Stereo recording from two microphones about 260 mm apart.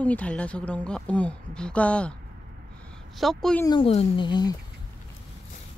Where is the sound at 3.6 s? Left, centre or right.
Centre.